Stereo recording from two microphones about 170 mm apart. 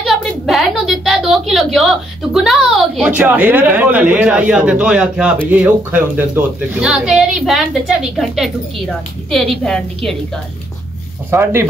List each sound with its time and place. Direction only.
0.0 s a woman's voice: centre (ahead or behind)
3.2 s speech: 10° right (ahead or behind)
11.2 s speech: 15° right (ahead or behind)